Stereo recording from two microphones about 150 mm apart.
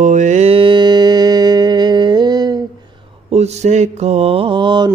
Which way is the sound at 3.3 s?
45° right (ahead or behind).